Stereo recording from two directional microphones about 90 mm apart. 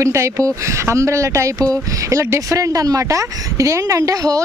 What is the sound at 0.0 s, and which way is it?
Speech, 35° right (ahead or behind).